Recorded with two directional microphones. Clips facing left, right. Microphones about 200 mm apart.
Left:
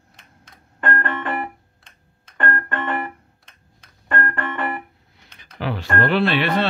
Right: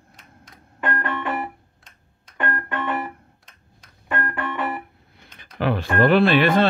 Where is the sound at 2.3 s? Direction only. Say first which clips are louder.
Left 2 dB; 10° right (ahead or behind).